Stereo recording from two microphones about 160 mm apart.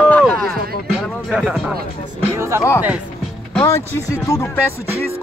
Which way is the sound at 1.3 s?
Centre (ahead or behind).